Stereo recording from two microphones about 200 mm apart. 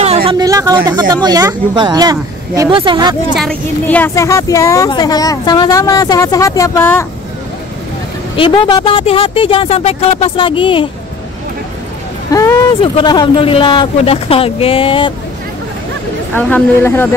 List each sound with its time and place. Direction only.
0.0 s speech: 30° right (ahead or behind)
3.3 s a woman's voice: 5° left (ahead or behind)
8.4 s speech: 25° left (ahead or behind)
12.3 s a woman's voice: 15° left (ahead or behind)
16.3 s a woman's voice: 10° left (ahead or behind)